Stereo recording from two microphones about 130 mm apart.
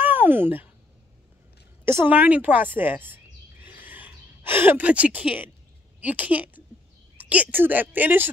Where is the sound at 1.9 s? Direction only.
15° right (ahead or behind).